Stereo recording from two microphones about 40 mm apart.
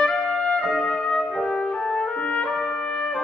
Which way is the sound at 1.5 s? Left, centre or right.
Left.